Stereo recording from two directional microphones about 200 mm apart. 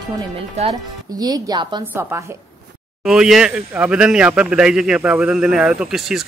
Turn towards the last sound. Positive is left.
turn(degrees=0)  # may be behind; listen again after turning